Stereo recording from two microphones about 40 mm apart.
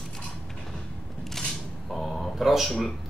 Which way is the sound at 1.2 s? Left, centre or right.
Centre.